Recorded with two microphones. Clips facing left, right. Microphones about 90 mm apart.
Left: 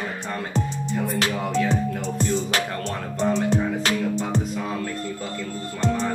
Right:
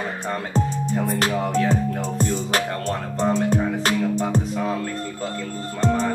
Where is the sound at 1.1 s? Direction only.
45° right (ahead or behind).